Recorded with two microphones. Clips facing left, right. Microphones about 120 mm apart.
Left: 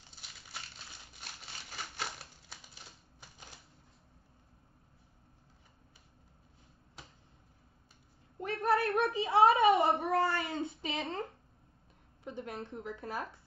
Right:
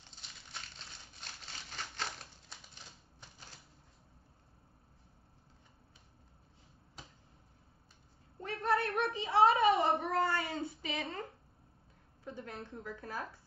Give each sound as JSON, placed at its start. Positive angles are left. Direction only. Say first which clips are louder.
{"t": 0.5, "sound": "crumpling", "louder": "left 1 dB", "side_deg": 10}
{"t": 8.4, "sound": "a sound", "louder": "left 3 dB", "side_deg": 15}
{"t": 9.5, "sound": "a child's voice", "louder": "left 2 dB", "side_deg": 25}
{"t": 12.3, "sound": "a woman's voice", "louder": "left 3 dB", "side_deg": 20}